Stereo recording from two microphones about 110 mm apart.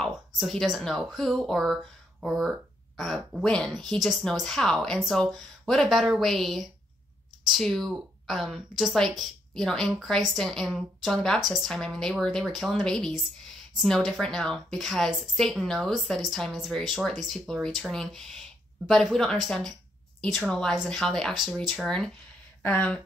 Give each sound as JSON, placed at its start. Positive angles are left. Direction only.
{"t": 0.0, "sound": "a woman's voice", "side_deg": 5}
{"t": 22.6, "sound": "speech", "side_deg": 15}